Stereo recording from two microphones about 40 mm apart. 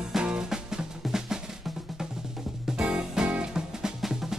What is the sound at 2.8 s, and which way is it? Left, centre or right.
Music, right.